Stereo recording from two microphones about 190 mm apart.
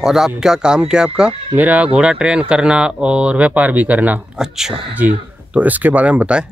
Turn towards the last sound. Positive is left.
turn(degrees=-5)  # may be behind; listen again after turning